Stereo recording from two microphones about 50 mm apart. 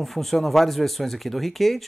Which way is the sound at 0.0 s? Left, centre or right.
Centre.